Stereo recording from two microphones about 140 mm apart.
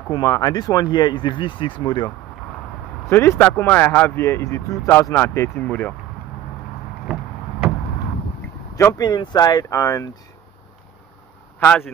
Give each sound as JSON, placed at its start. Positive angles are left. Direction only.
{"t": 0.1, "sound": "speech", "side_deg": 25}
{"t": 3.1, "sound": "speech", "side_deg": 15}
{"t": 8.7, "sound": "speech", "side_deg": 25}
{"t": 11.6, "sound": "speech", "side_deg": 10}